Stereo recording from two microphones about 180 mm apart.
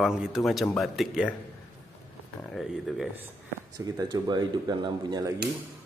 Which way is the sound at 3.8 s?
20° right (ahead or behind).